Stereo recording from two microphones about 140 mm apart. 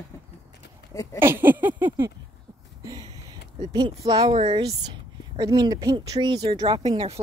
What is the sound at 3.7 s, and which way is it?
Speech, 30° right (ahead or behind).